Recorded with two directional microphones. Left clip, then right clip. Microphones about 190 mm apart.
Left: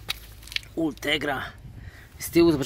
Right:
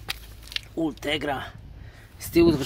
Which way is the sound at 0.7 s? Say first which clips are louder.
Left 1 dB; centre (ahead or behind).